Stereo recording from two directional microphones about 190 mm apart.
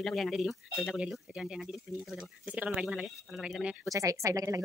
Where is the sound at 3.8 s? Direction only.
15° right (ahead or behind).